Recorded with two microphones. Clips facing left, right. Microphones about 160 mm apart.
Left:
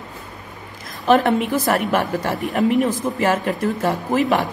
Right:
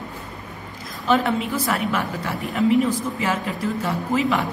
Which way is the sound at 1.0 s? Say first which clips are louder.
Left 4 dB; 60° left (ahead or behind).